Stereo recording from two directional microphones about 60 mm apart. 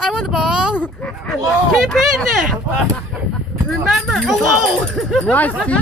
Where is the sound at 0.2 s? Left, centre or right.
Centre.